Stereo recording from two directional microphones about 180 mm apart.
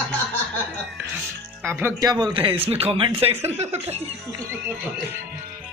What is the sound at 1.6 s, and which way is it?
Speech, 15° right (ahead or behind).